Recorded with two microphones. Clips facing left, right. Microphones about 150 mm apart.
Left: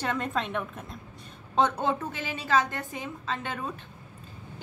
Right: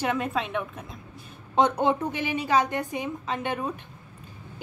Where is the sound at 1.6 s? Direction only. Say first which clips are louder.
Right 3 dB; 15° right (ahead or behind).